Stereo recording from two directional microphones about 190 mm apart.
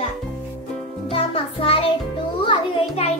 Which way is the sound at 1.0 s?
30° left (ahead or behind).